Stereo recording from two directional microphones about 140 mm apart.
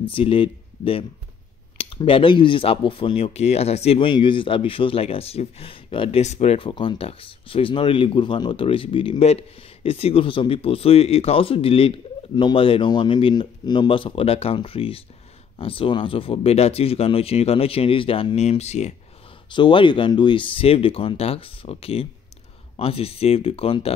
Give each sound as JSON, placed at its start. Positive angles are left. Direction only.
{"t": 0.0, "sound": "speech", "side_deg": 40}
{"t": 6.2, "sound": "speech", "side_deg": 50}
{"t": 6.7, "sound": "speech", "side_deg": 35}
{"t": 19.5, "sound": "speech", "side_deg": 35}